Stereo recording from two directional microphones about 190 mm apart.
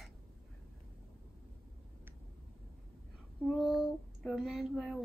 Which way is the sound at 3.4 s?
Centre (ahead or behind).